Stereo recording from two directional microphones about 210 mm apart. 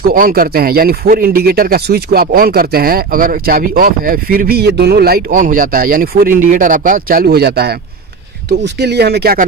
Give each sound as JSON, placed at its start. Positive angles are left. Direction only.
{"t": 0.0, "sound": "speech", "side_deg": -45}